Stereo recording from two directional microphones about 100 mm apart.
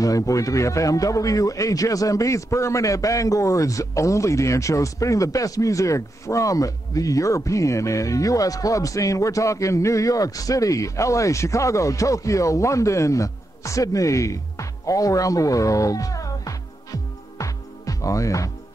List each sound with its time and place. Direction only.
0.0 s speech: 35° left (ahead or behind)